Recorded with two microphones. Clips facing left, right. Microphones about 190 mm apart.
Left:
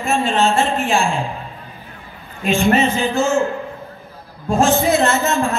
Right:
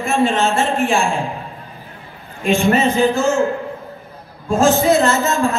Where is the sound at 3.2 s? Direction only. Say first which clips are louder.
Right 1 dB; centre (ahead or behind).